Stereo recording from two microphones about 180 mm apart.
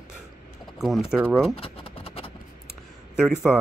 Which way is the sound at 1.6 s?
30° left (ahead or behind).